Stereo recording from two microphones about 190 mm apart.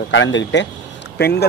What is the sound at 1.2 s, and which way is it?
Speech, 60° left (ahead or behind).